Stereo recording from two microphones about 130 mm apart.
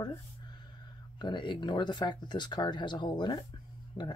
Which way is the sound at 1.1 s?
35° left (ahead or behind).